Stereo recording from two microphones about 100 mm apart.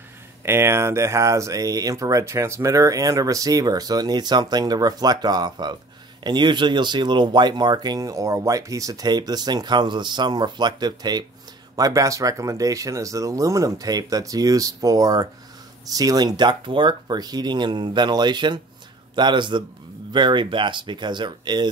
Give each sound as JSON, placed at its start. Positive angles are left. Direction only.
{"t": 0.4, "sound": "speech", "side_deg": -25}